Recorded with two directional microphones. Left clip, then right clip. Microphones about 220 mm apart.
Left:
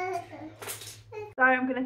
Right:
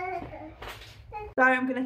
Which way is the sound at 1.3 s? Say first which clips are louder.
Right 1 dB; 20° right (ahead or behind).